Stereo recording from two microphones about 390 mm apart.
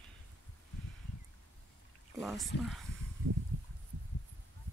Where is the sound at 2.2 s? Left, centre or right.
Centre.